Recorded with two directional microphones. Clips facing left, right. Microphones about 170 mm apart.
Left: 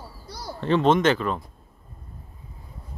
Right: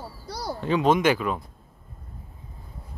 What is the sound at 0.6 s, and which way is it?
Speech, 5° right (ahead or behind).